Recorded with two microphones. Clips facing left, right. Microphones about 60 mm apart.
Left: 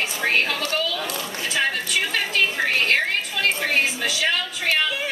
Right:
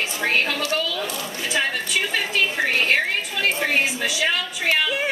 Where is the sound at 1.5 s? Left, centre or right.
Centre.